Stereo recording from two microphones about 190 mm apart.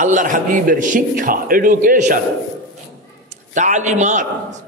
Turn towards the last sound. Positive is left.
turn(degrees=-40)  # may be behind; listen again after turning